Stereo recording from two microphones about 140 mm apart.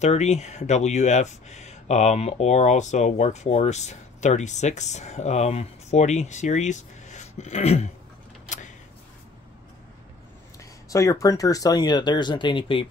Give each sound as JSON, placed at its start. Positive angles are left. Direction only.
{"t": 0.0, "sound": "speech", "side_deg": 50}
{"t": 10.6, "sound": "speech", "side_deg": 20}